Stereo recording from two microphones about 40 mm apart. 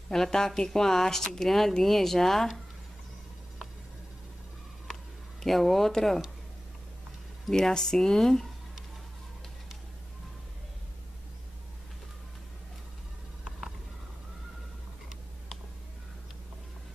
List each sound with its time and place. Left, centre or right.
0.1 s speech: centre
5.4 s speech: centre
7.7 s speech: centre